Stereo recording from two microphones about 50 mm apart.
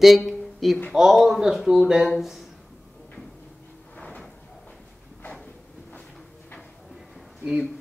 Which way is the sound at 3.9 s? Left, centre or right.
Left.